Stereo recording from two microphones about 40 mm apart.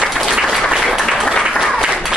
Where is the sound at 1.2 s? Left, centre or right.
Centre.